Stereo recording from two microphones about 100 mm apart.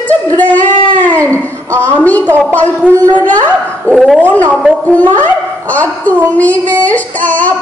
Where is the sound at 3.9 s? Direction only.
Centre (ahead or behind).